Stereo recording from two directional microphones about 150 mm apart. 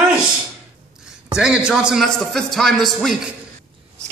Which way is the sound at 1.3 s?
5° right (ahead or behind).